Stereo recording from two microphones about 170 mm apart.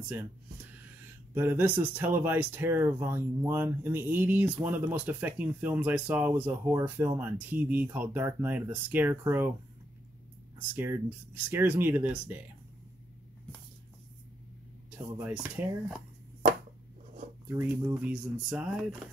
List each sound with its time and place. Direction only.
1.3 s speech: 10° right (ahead or behind)
10.7 s speech: 10° right (ahead or behind)
15.6 s speech: 10° right (ahead or behind)
17.5 s speech: 15° right (ahead or behind)
18.1 s speech: 5° right (ahead or behind)